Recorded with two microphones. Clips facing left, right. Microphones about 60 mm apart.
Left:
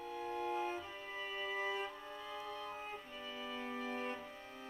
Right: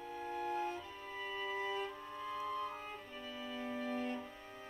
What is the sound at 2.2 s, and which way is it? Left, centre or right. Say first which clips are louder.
Music: right 7 dB; right.